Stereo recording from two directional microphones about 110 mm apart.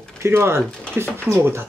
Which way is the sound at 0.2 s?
25° right (ahead or behind).